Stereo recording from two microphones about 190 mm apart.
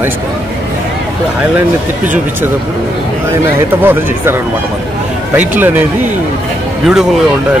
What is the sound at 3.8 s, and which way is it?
A man's voice, 10° right (ahead or behind).